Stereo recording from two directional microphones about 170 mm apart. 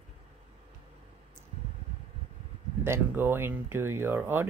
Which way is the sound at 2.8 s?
15° right (ahead or behind).